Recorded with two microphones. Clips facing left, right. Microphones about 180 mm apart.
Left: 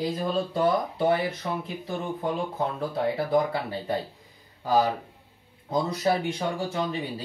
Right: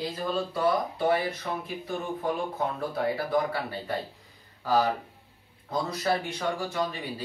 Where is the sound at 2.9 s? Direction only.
20° left (ahead or behind).